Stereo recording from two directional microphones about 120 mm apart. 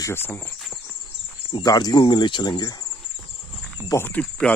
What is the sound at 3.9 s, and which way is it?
Speech, 15° left (ahead or behind).